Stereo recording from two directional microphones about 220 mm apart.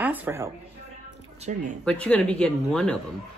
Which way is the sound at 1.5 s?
35° right (ahead or behind).